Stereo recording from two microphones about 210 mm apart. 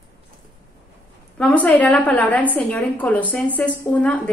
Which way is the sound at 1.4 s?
5° left (ahead or behind).